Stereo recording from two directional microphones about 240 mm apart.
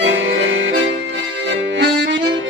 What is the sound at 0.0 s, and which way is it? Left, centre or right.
Music, right.